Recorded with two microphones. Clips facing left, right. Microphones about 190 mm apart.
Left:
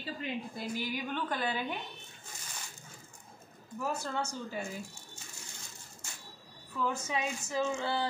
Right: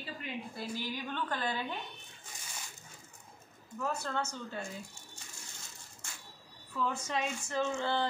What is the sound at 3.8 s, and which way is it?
Speech, 10° left (ahead or behind).